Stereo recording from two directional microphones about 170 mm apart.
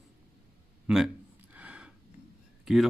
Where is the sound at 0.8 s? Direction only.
5° right (ahead or behind).